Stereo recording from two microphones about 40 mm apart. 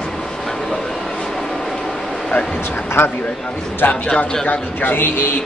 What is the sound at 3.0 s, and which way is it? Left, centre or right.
A man's voice, left.